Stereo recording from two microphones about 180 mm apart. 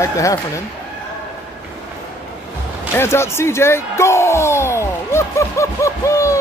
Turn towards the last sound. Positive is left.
turn(degrees=15)  # may be behind; listen again after turning